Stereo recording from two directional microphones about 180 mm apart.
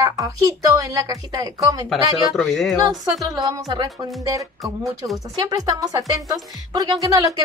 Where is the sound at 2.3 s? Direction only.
Centre (ahead or behind).